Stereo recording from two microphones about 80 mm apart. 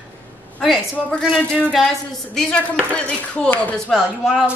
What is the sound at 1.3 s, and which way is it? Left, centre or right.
Speech, centre.